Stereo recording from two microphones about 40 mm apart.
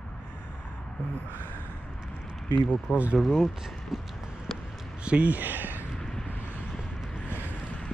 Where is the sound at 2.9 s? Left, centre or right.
Centre.